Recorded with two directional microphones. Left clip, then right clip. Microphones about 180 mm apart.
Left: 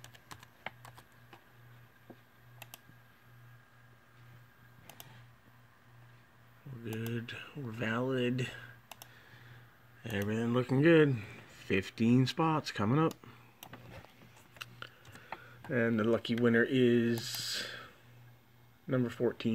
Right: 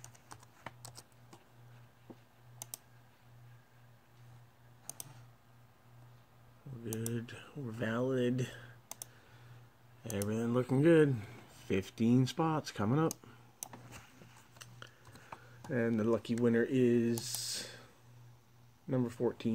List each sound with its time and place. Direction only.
6.8 s speech: 5° left (ahead or behind)
10.0 s speech: 10° left (ahead or behind)
15.7 s speech: 5° left (ahead or behind)
18.9 s speech: centre (ahead or behind)